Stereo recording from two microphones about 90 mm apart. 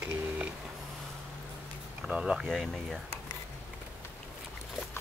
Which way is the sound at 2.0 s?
10° right (ahead or behind).